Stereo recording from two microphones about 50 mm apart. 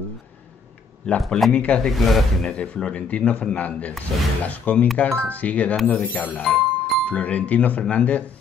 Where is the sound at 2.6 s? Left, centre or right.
Left.